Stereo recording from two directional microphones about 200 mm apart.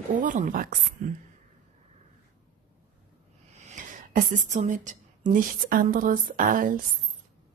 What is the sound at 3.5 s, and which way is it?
A woman's voice, 35° right (ahead or behind).